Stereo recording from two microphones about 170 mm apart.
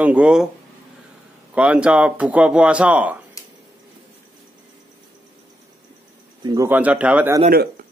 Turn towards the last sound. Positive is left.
turn(degrees=-10)  # may be behind; listen again after turning